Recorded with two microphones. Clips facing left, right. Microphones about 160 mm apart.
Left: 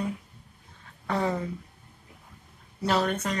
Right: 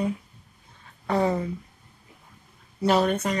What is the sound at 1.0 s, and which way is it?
Speech, 15° right (ahead or behind).